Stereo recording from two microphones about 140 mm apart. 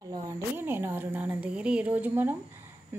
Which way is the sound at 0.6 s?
15° right (ahead or behind).